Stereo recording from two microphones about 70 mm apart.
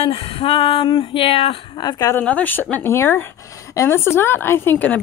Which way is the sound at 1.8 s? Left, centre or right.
Left.